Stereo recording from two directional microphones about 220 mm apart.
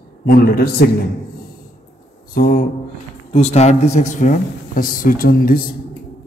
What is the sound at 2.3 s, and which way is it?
Speech, 40° left (ahead or behind).